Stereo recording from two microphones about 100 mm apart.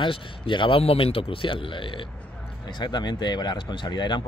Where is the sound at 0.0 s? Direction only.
55° left (ahead or behind).